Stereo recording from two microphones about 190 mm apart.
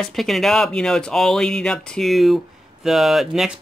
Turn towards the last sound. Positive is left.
turn(degrees=0)  # may be behind; listen again after turning